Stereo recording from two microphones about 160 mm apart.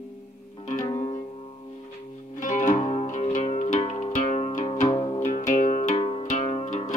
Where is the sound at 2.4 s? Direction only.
55° left (ahead or behind); by 5.2 s 35° left (ahead or behind).